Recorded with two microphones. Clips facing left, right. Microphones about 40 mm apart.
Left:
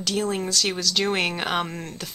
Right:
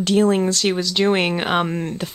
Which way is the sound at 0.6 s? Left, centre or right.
Centre.